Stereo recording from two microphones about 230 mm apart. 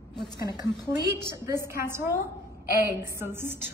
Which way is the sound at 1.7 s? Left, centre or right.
Centre.